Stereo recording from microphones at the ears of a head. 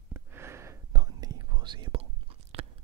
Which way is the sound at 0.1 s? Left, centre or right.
Right.